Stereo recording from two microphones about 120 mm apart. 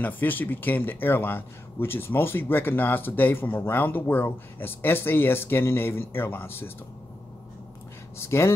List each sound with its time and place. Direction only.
0.0 s a man's voice: 15° left (ahead or behind)
8.3 s speech: 20° left (ahead or behind)